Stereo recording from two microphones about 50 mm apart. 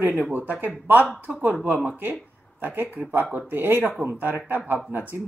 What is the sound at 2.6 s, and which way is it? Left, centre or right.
A woman's voice, right.